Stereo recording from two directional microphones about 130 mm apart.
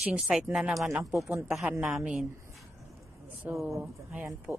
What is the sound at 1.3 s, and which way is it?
Speech, 10° right (ahead or behind).